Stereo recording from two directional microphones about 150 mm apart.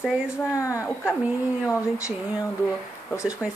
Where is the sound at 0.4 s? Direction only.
20° left (ahead or behind).